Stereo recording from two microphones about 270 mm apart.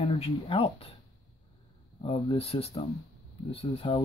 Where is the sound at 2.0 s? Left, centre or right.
Centre.